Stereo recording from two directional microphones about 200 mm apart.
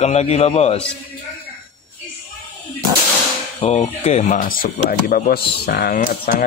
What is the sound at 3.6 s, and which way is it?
Speech, 30° left (ahead or behind).